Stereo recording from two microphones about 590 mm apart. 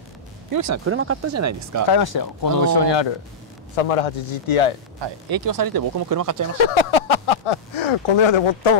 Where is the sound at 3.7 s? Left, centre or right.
Left.